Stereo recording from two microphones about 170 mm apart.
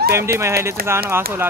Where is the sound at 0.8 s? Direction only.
65° right (ahead or behind).